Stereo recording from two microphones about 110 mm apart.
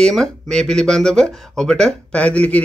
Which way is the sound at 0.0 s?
5° left (ahead or behind).